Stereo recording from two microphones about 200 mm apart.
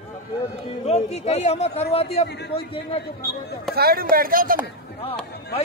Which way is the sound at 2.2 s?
55° left (ahead or behind).